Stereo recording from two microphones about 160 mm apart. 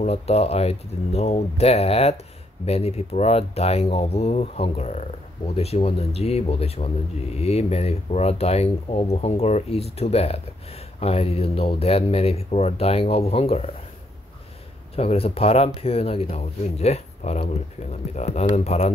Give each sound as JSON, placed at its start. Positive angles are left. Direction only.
{"t": 0.0, "sound": "speech", "side_deg": 40}
{"t": 15.0, "sound": "speech", "side_deg": 40}